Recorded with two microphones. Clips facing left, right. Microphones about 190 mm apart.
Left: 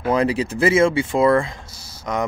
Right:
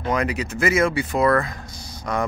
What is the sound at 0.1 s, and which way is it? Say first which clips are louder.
Speech: left 5 dB; 30° left (ahead or behind).